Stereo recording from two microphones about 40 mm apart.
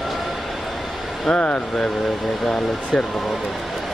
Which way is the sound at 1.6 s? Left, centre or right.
Centre.